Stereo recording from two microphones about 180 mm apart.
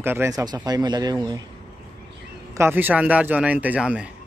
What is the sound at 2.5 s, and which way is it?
Speech, 10° right (ahead or behind).